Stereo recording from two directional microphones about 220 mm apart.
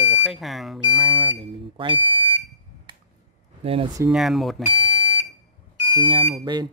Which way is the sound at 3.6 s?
25° right (ahead or behind).